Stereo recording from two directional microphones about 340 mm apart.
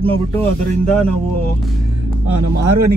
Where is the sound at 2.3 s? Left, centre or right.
Right.